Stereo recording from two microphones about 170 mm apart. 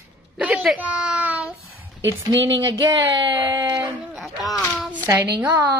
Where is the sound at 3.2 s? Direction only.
20° right (ahead or behind).